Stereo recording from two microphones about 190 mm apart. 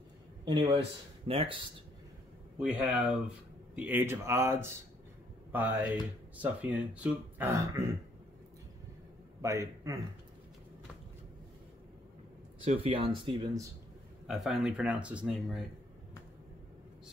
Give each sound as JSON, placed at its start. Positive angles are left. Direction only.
{"t": 0.5, "sound": "speech", "side_deg": -25}
{"t": 2.6, "sound": "speech", "side_deg": -5}
{"t": 9.4, "sound": "a man's voice", "side_deg": -15}
{"t": 12.6, "sound": "speech", "side_deg": -30}
{"t": 14.2, "sound": "speech", "side_deg": 0}